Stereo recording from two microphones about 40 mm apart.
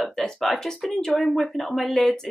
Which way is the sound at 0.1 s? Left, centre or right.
Centre.